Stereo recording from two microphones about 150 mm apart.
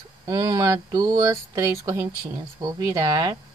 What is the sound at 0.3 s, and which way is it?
Speech, 25° right (ahead or behind).